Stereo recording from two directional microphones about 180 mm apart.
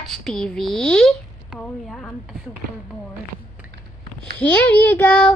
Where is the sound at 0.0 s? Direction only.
Centre (ahead or behind).